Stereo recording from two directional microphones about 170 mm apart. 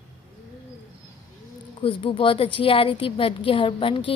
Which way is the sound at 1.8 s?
30° left (ahead or behind).